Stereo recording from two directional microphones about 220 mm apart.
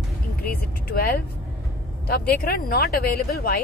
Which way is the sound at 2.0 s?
45° left (ahead or behind).